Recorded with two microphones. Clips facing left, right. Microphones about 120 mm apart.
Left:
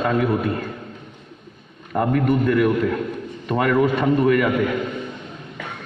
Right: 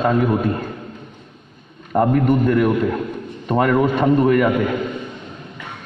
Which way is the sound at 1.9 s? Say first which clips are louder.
Right 3 dB; 30° right (ahead or behind).